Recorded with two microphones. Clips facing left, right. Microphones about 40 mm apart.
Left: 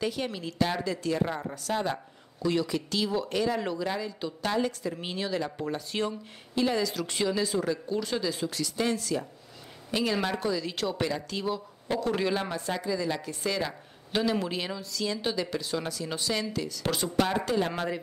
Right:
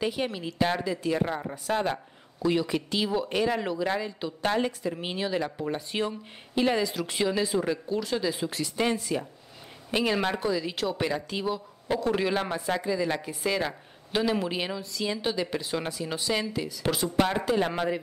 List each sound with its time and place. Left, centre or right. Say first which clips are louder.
0.0 s speech: right 2 dB; centre
3.5 s speech: right 1 dB; centre
3.8 s speech: right 3 dB; right
4.8 s speech: right 2 dB; centre
6.6 s speech: right 2 dB; right
6.9 s speech: right 1 dB; centre
7.9 s speech: right 2 dB; centre
8.2 s speech: right 2 dB; centre
8.5 s speech: right 2 dB; right; by 11.0 s centre
11.0 s speech: right 1 dB; centre
11.4 s a man's voice: right 1 dB; centre
12.4 s speech: right 3 dB; centre
13.3 s speech: right 2 dB; centre